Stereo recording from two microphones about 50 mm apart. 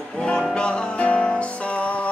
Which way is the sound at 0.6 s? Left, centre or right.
Centre.